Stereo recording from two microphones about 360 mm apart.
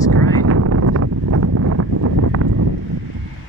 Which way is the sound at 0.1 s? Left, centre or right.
Right.